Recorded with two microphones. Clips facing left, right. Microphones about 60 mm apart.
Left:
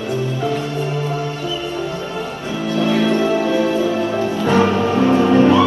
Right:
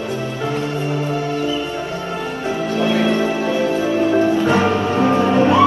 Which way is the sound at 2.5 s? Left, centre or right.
Right.